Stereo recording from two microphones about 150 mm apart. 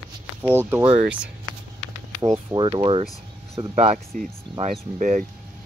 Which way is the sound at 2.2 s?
25° right (ahead or behind).